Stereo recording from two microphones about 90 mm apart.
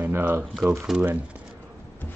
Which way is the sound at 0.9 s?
15° right (ahead or behind).